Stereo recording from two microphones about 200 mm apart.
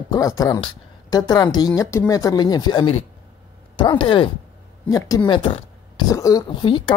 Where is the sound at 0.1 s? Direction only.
15° left (ahead or behind).